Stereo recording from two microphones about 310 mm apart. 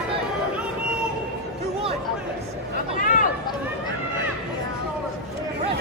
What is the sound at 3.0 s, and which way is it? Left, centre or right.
Run, left.